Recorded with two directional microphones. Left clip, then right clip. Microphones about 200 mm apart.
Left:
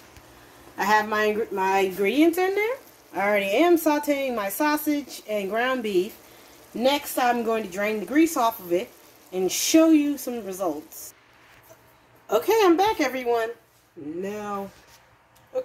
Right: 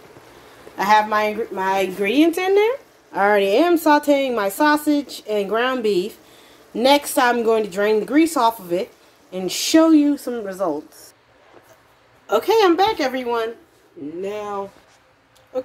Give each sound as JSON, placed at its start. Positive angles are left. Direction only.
{"t": 0.7, "sound": "speech", "side_deg": 0}
{"t": 2.0, "sound": "speech", "side_deg": -15}
{"t": 12.3, "sound": "speech", "side_deg": -5}